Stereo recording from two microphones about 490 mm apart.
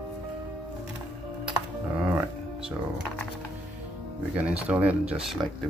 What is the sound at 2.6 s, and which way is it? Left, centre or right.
Speech, centre.